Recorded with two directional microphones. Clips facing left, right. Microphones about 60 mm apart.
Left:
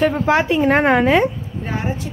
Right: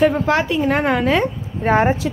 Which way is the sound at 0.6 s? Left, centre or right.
Left.